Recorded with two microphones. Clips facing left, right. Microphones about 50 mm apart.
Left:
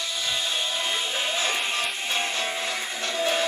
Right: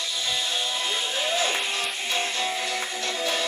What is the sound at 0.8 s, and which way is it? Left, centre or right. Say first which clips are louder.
Music: even; left.